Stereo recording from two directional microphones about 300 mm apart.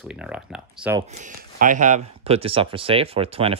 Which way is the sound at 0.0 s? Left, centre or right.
Centre.